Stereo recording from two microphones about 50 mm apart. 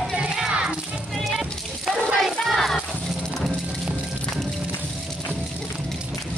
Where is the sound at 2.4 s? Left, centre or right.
Centre.